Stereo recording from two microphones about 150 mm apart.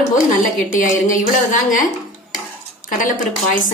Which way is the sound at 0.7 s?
60° left (ahead or behind).